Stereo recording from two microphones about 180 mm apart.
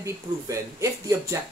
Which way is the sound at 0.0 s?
15° right (ahead or behind).